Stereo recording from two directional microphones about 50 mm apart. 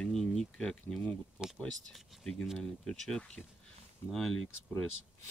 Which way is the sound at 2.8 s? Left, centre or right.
Centre.